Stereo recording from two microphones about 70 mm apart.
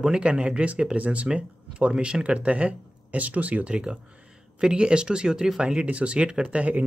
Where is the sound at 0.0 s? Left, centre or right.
Centre.